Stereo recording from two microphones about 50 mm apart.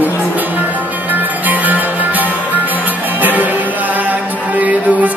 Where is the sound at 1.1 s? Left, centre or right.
Right.